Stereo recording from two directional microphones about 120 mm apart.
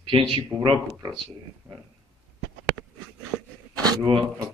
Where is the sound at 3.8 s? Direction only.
40° right (ahead or behind).